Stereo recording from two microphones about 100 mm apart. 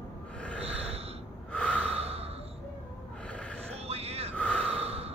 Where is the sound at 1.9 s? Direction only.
90° right.